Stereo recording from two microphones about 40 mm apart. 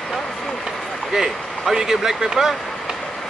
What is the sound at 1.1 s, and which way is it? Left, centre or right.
Speech, centre.